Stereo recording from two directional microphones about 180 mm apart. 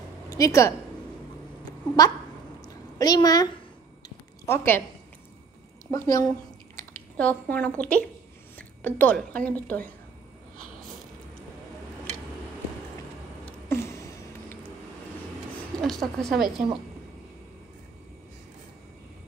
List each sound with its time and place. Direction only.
0.3 s a woman's voice: 15° left (ahead or behind)
1.6 s a sound: 20° left (ahead or behind)
3.0 s a woman's voice: 20° left (ahead or behind)
4.5 s a woman's voice: 10° left (ahead or behind)
5.9 s a woman's voice: 20° left (ahead or behind)
6.8 s a sound: 10° left (ahead or behind)
7.8 s a woman's voice: 5° left (ahead or behind)
13.5 s a sound: 15° left (ahead or behind)
15.8 s speech: centre (ahead or behind)